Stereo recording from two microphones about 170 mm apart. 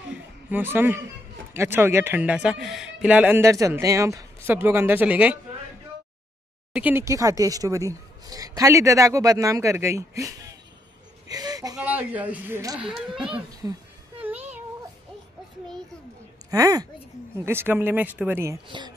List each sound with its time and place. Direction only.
0.1 s a sound: 10° right (ahead or behind)
1.5 s speech: 15° right (ahead or behind)
6.7 s speech: 10° right (ahead or behind)
11.2 s a sound: 20° right (ahead or behind)
11.7 s speech: 10° right (ahead or behind)
13.3 s speech: 20° right (ahead or behind)
16.4 s speech: 20° right (ahead or behind)
18.7 s speech: 25° right (ahead or behind)